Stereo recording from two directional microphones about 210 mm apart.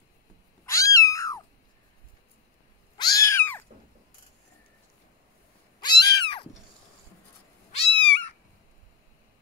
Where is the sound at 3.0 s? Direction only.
15° left (ahead or behind).